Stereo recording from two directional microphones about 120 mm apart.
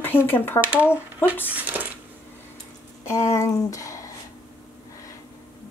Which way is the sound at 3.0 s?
25° left (ahead or behind).